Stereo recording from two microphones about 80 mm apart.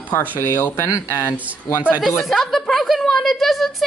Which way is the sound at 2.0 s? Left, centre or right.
Centre.